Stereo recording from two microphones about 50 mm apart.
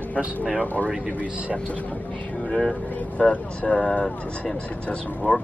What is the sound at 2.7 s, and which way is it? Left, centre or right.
Speech, left.